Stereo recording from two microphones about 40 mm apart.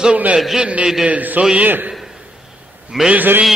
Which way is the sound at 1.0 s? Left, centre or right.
Right.